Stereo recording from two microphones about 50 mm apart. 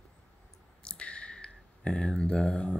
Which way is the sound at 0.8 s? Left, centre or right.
Centre.